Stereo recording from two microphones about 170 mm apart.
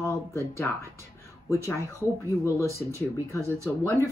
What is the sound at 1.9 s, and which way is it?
Speech, 15° left (ahead or behind).